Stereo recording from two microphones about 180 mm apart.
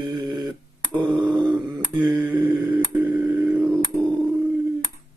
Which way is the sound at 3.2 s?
5° right (ahead or behind).